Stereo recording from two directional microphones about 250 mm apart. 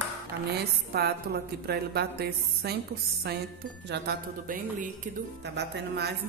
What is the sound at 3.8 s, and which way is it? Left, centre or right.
Speech, right.